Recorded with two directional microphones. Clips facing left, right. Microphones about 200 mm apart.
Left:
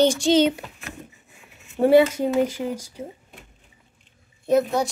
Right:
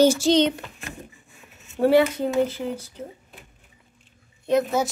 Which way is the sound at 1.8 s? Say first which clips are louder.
Left 2 dB; 15° left (ahead or behind).